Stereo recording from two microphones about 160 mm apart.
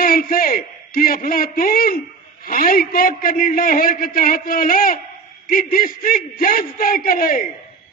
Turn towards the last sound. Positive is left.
turn(degrees=60)  # may be behind; listen again after turning